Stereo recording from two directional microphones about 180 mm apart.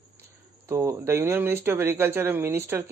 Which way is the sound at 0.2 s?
15° right (ahead or behind).